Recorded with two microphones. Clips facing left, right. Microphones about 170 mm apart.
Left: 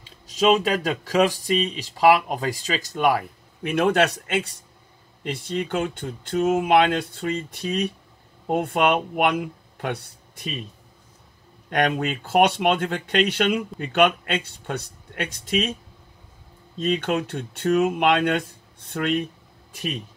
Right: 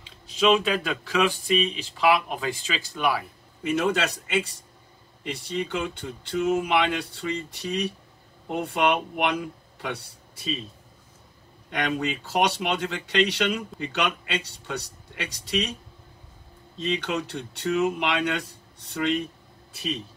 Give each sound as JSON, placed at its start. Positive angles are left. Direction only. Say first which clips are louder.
{"t": 0.3, "sound": "speech", "louder": "left 2 dB", "side_deg": 40}
{"t": 11.7, "sound": "speech", "louder": "left 4 dB", "side_deg": 55}
{"t": 16.8, "sound": "speech", "louder": "left 4 dB", "side_deg": 50}